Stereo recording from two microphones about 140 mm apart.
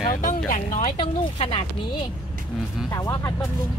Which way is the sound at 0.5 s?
65° left (ahead or behind).